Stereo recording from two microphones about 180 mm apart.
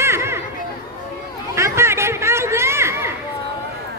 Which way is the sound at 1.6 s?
15° right (ahead or behind).